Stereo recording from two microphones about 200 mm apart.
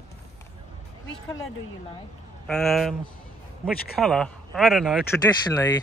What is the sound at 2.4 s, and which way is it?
Speech, centre (ahead or behind).